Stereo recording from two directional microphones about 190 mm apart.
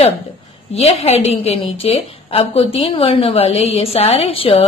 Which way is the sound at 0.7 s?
35° left (ahead or behind).